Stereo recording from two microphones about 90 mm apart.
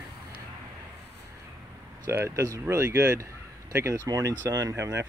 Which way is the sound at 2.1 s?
35° right (ahead or behind).